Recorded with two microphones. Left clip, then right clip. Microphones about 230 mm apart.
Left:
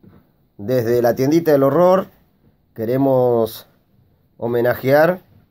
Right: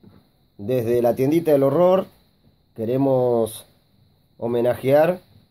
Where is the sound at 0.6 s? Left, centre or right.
Centre.